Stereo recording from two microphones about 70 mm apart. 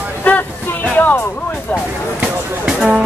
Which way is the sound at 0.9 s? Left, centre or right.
Left.